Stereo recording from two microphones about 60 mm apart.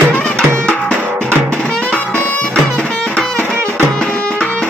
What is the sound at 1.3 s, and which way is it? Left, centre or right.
Music, right.